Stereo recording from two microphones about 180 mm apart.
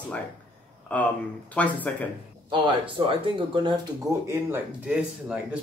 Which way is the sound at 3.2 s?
25° right (ahead or behind).